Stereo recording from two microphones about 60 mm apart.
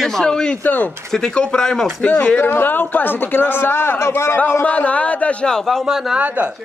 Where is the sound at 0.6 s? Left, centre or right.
Left.